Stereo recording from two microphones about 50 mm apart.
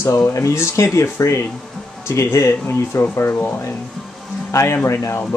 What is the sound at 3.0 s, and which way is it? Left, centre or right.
Speech, left.